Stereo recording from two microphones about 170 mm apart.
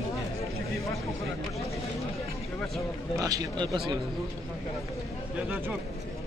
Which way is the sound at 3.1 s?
20° right (ahead or behind).